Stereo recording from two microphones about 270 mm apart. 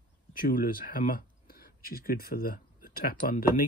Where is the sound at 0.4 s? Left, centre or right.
Left.